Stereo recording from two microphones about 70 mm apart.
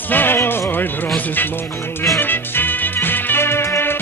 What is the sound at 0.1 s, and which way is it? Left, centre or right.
Music, left.